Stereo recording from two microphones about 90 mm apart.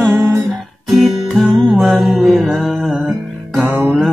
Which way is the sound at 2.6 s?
5° right (ahead or behind).